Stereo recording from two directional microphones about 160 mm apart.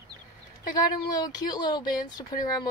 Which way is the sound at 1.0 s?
25° left (ahead or behind).